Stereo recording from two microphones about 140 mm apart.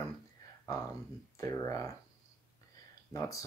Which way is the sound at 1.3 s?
20° left (ahead or behind).